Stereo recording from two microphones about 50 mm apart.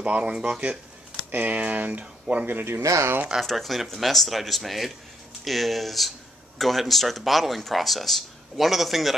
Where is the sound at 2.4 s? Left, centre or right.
Right.